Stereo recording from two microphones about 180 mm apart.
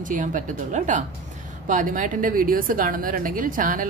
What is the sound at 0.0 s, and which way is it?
A woman's voice, 45° right (ahead or behind).